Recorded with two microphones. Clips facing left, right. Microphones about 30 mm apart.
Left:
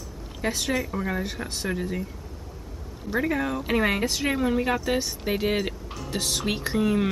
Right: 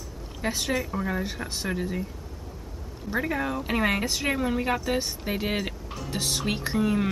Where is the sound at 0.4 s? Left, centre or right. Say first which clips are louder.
Left 1 dB; centre.